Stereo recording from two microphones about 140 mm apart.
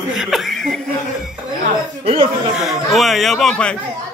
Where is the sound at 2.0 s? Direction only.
45° right (ahead or behind).